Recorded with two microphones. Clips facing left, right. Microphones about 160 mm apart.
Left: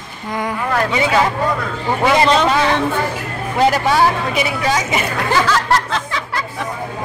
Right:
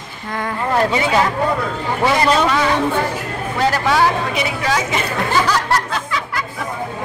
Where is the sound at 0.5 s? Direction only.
25° right (ahead or behind).